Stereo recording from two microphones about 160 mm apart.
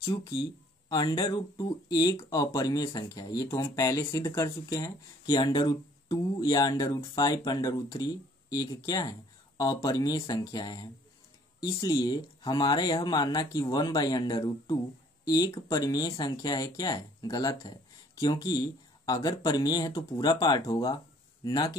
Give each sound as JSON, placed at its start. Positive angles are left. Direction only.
{"t": 0.0, "sound": "speech", "side_deg": 35}